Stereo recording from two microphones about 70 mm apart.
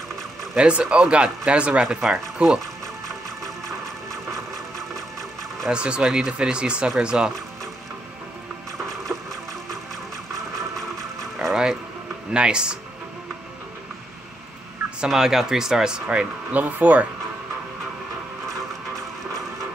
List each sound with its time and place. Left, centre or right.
0.6 s speech: centre
5.7 s speech: centre
11.4 s a sound: centre
12.3 s speech: centre
15.0 s speech: centre; by 17.1 s right